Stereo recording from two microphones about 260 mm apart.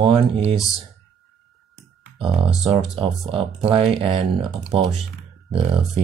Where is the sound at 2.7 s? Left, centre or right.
Right.